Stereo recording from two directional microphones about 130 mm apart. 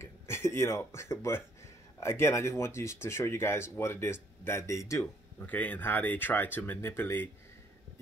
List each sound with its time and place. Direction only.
0.0 s speech: 20° left (ahead or behind)